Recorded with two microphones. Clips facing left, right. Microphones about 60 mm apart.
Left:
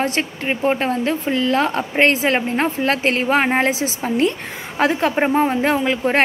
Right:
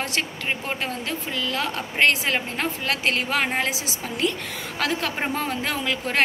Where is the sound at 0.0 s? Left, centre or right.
Left.